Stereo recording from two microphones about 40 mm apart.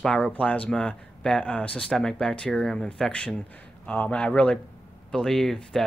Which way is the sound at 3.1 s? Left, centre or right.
Left.